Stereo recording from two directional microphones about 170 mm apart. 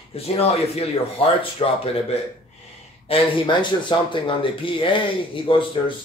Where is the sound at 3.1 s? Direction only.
30° left (ahead or behind).